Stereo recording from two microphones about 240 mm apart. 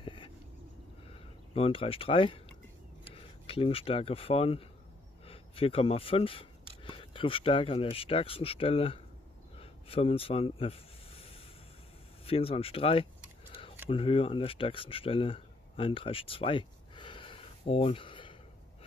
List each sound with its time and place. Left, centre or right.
0.0 s a sound: left
1.1 s speech: left
9.6 s snake: left
12.3 s speech: left